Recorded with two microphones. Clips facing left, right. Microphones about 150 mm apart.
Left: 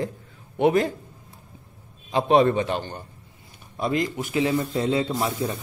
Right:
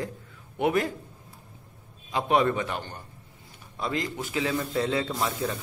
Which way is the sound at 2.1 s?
30° left (ahead or behind).